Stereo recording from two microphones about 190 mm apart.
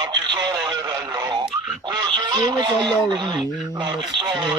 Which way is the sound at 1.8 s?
25° right (ahead or behind).